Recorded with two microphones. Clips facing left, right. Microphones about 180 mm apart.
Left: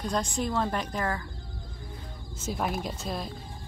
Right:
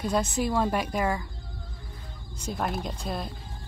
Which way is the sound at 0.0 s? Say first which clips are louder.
Right 3 dB; 5° right (ahead or behind).